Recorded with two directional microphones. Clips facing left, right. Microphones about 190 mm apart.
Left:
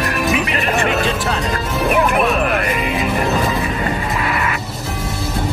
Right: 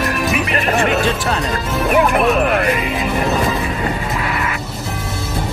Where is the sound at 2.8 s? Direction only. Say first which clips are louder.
Left 1 dB; centre (ahead or behind).